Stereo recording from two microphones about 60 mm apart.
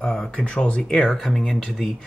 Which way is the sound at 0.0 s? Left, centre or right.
Centre.